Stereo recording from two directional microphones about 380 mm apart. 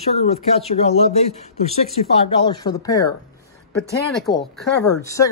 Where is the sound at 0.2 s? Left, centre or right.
Centre.